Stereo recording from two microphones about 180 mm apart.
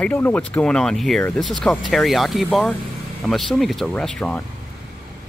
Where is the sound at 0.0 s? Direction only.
10° left (ahead or behind).